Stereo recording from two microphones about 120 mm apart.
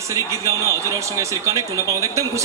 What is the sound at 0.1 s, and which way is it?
A man's voice, 25° right (ahead or behind).